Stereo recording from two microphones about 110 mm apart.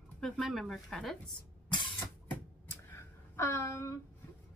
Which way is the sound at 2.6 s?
25° left (ahead or behind).